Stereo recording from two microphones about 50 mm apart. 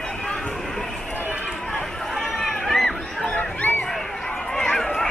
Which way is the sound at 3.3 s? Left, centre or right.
Left.